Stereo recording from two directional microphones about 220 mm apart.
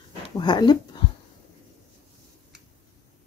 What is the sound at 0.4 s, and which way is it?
Speech, 20° left (ahead or behind).